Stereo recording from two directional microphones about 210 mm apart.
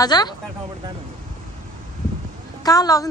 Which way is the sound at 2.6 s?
15° left (ahead or behind).